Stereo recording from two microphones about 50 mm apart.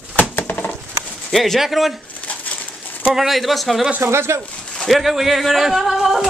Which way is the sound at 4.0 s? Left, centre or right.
Right.